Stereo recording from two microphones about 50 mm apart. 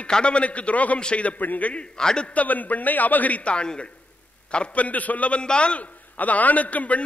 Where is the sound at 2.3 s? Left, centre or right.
Left.